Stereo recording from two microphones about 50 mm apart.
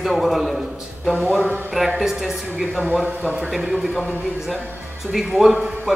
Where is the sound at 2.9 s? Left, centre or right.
Right.